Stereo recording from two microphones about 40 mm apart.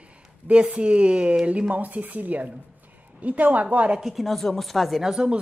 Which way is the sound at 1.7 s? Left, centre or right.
Right.